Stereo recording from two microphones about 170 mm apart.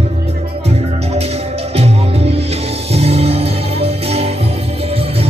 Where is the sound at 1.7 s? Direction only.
35° right (ahead or behind).